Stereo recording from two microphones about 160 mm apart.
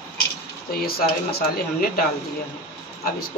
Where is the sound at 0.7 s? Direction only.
70° left (ahead or behind).